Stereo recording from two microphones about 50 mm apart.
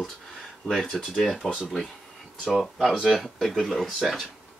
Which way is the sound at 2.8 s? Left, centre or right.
Centre.